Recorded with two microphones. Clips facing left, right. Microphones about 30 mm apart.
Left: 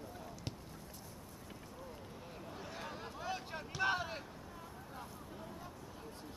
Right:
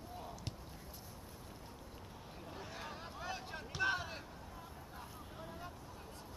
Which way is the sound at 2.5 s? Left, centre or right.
Centre.